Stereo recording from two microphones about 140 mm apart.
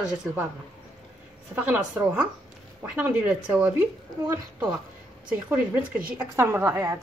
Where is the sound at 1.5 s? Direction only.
10° right (ahead or behind).